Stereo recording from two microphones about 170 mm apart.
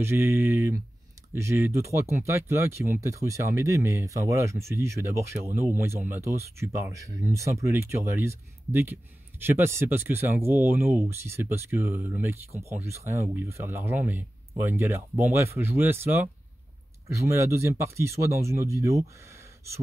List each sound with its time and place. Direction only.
0.0 s speech: 15° right (ahead or behind)